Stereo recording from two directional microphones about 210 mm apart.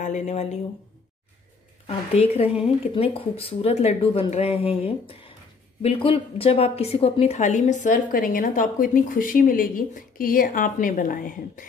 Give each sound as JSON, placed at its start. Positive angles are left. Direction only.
{"t": 0.0, "sound": "a woman's voice", "side_deg": 35}
{"t": 1.9, "sound": "a woman's voice", "side_deg": 30}